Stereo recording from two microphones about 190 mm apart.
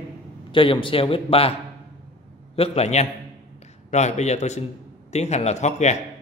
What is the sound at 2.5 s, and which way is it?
Speech, 30° left (ahead or behind).